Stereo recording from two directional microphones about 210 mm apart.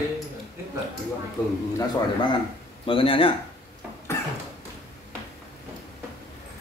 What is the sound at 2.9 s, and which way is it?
Speech, 25° left (ahead or behind).